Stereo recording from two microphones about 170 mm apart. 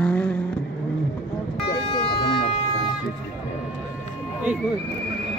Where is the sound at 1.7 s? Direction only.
40° left (ahead or behind).